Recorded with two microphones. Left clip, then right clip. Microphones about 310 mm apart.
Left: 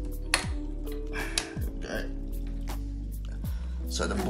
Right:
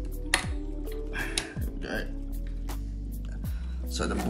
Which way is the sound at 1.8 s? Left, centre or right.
Left.